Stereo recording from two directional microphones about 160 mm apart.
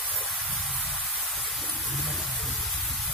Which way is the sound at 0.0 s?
Centre (ahead or behind).